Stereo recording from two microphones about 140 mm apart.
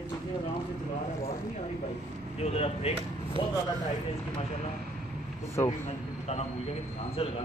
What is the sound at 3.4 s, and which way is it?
Speech, 30° left (ahead or behind).